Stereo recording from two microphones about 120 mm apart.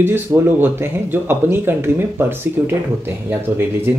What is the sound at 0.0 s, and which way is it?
A man's voice, 20° right (ahead or behind).